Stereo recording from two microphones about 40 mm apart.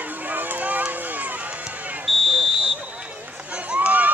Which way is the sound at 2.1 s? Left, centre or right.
Centre.